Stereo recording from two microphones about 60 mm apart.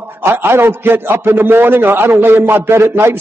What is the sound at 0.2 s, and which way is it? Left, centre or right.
A man's voice, right.